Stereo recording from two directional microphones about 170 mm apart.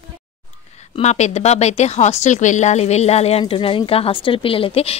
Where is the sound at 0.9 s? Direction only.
40° left (ahead or behind).